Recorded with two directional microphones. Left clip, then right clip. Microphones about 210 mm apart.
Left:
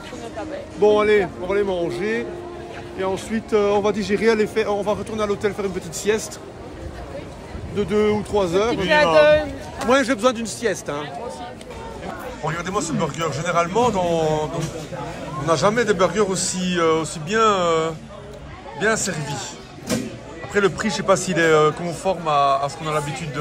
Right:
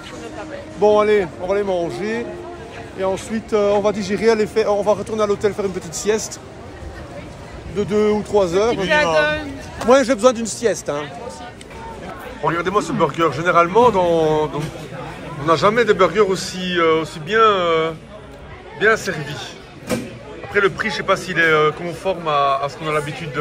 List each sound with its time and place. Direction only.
0.7 s speech: centre (ahead or behind)
7.7 s a man's voice: 10° left (ahead or behind)
9.2 s speech: 50° left (ahead or behind)
9.8 s speech: centre (ahead or behind)
12.4 s a man's voice: 5° left (ahead or behind)
20.5 s a man's voice: 15° left (ahead or behind)